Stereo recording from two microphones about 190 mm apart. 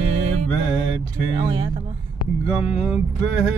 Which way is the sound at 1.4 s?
25° right (ahead or behind).